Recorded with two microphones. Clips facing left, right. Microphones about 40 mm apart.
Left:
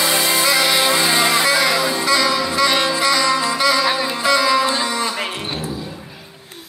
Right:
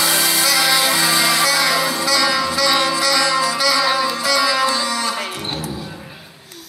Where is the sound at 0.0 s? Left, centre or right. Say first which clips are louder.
Left 1 dB; centre.